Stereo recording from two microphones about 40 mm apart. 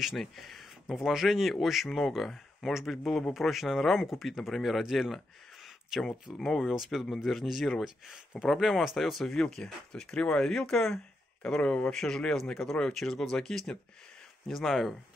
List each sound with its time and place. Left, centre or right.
0.0 s speech: centre
9.3 s speech: centre
11.9 s speech: centre